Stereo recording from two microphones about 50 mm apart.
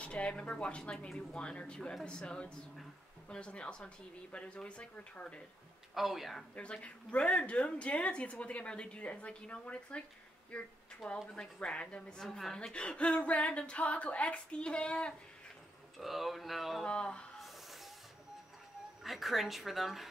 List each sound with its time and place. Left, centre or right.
0.0 s speech: left
5.9 s a woman's voice: centre
6.5 s a woman's voice: left
12.2 s a woman's voice: centre
12.5 s speech: left
16.0 s a woman's voice: centre
16.8 s speech: centre
19.0 s a woman's voice: centre